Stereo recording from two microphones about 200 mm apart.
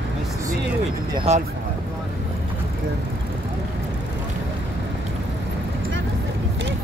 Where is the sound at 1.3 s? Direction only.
30° right (ahead or behind).